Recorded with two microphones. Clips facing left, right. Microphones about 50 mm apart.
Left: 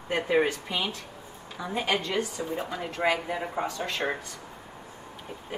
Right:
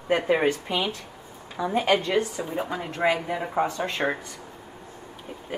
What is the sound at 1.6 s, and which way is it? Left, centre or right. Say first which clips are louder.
Speech: right 6 dB; centre.